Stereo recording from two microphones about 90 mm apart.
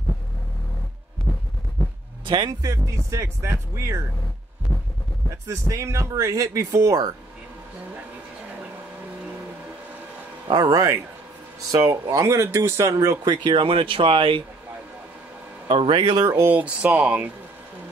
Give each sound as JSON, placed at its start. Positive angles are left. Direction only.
{"t": 1.3, "sound": "heart sounds", "side_deg": 50}
{"t": 2.2, "sound": "speech", "side_deg": -55}
{"t": 2.6, "sound": "speech", "side_deg": -35}
{"t": 5.5, "sound": "speech", "side_deg": -35}
{"t": 10.5, "sound": "speech", "side_deg": -40}
{"t": 13.2, "sound": "speech", "side_deg": -55}
{"t": 15.7, "sound": "speech", "side_deg": -70}
{"t": 16.4, "sound": "speech", "side_deg": -15}